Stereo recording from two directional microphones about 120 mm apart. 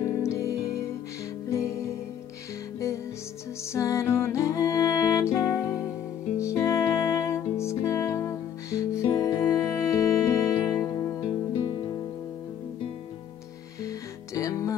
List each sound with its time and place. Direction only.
0.0 s music: 25° left (ahead or behind)
3.7 s music: 25° left (ahead or behind)
13.8 s music: 25° left (ahead or behind)